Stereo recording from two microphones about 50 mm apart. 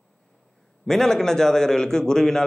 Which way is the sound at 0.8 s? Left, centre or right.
Centre.